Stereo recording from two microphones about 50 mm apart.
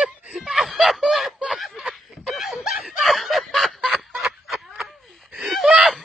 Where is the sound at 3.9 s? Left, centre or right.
Centre.